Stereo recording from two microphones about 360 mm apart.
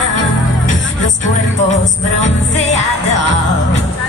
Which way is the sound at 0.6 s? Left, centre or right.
Centre.